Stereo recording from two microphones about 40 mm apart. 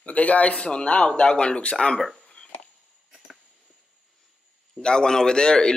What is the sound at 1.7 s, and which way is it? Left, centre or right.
Speech, centre.